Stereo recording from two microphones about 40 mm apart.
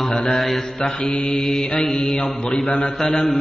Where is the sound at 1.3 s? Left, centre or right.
Centre.